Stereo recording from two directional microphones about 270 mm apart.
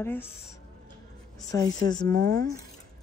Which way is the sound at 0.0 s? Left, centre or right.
Centre.